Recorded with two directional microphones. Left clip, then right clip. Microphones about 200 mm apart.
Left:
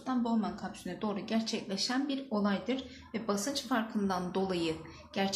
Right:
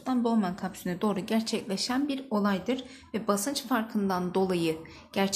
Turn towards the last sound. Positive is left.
turn(degrees=-35)  # may be behind; listen again after turning